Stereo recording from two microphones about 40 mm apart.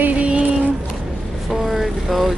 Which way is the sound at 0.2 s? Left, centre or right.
Right.